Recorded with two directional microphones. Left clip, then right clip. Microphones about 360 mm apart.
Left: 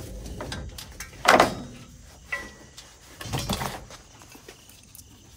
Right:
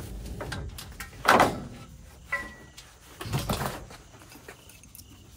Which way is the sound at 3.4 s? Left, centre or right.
Centre.